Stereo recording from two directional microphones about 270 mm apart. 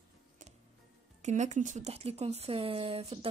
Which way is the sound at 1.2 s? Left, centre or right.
Right.